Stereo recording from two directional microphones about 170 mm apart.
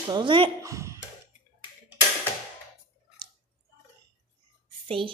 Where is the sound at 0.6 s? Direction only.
15° right (ahead or behind).